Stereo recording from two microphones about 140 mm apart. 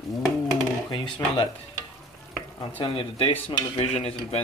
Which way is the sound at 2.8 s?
40° left (ahead or behind).